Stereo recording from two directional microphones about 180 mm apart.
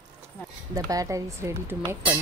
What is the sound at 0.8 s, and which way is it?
Speech, 20° right (ahead or behind).